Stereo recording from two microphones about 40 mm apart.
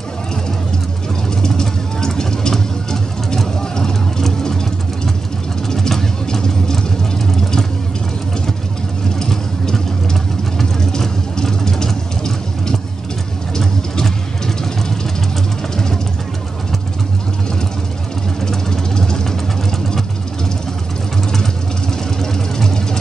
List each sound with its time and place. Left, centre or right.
1.4 s vehicle: centre
5.8 s vehicle: centre
9.2 s vehicle: centre
13.6 s vehicle: centre
18.5 s vehicle: centre